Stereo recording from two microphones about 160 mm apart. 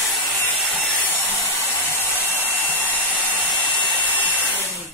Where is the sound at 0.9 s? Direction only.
10° left (ahead or behind).